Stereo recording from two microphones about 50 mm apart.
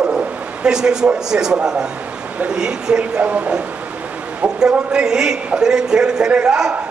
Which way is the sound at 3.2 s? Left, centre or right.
Right.